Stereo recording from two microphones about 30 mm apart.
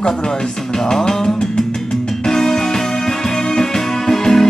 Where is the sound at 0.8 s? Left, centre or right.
Left.